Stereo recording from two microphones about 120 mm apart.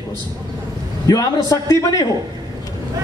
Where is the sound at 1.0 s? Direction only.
30° left (ahead or behind).